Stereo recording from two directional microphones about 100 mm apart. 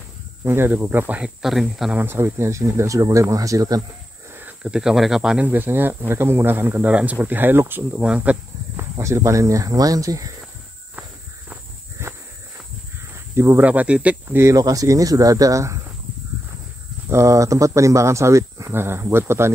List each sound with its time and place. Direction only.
0.4 s speech: 25° right (ahead or behind)
1.4 s speech: centre (ahead or behind)
2.0 s speech: 20° right (ahead or behind)
4.4 s a sound: 15° right (ahead or behind)
4.7 s speech: 5° right (ahead or behind)
5.5 s speech: 20° right (ahead or behind)
8.9 s speech: 30° right (ahead or behind)
12.0 s a sound: 30° right (ahead or behind)
13.1 s snake: 25° right (ahead or behind)
13.7 s speech: 15° right (ahead or behind)
14.2 s speech: 25° right (ahead or behind)
17.1 s speech: 30° right (ahead or behind)